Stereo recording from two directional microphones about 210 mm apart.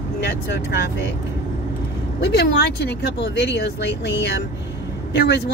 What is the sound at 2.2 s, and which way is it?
Speech, 50° left (ahead or behind).